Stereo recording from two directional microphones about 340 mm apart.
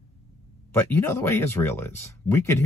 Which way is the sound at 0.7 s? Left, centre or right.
Centre.